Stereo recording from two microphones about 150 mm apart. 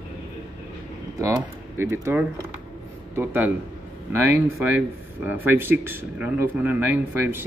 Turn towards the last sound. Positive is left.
turn(degrees=-15)  # may be behind; listen again after turning